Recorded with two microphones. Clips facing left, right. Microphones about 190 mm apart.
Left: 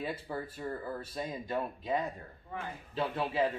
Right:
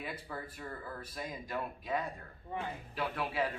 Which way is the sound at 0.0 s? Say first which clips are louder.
Left 5 dB; 25° left (ahead or behind).